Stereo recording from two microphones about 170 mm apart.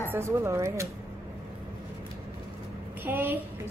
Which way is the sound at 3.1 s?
10° right (ahead or behind).